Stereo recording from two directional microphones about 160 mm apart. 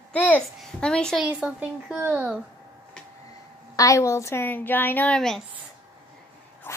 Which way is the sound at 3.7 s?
20° left (ahead or behind).